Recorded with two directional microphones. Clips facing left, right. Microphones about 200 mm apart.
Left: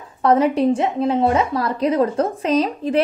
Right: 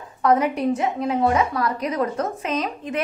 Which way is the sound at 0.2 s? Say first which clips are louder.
Left 4 dB; 30° left (ahead or behind).